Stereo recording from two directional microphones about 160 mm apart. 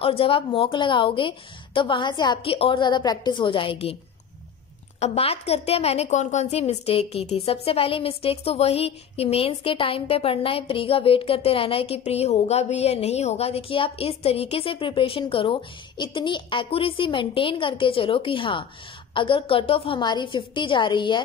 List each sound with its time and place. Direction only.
0.0 s a woman's voice: 35° left (ahead or behind)
5.0 s a woman's voice: 40° left (ahead or behind)